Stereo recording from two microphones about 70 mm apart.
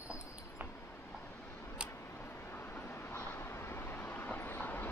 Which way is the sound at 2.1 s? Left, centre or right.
Left.